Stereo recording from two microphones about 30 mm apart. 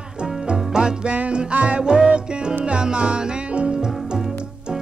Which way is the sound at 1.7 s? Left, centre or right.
Right.